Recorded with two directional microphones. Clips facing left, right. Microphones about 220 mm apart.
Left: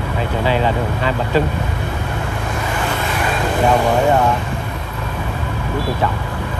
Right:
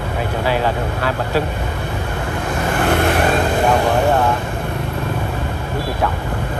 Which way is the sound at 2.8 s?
60° right (ahead or behind).